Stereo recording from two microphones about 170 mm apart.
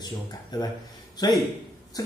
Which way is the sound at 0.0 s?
25° left (ahead or behind).